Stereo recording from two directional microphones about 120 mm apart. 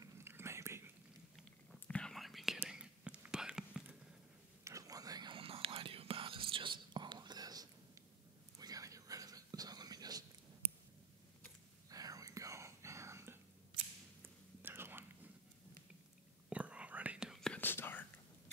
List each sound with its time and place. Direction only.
0.0 s whispering: 20° right (ahead or behind)
1.9 s whispering: 5° left (ahead or behind)
4.6 s whispering: 30° right (ahead or behind)
11.9 s whispering: 30° right (ahead or behind)
16.4 s whispering: 10° right (ahead or behind)
17.6 s whispering: 15° left (ahead or behind)